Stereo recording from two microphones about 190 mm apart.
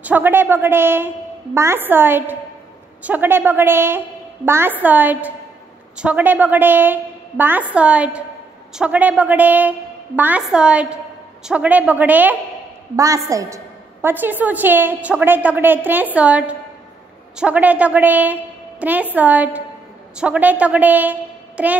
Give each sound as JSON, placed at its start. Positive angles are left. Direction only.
{"t": 0.0, "sound": "a woman's voice", "side_deg": -10}